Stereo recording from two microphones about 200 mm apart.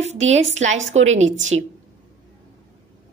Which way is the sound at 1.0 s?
75° right (ahead or behind).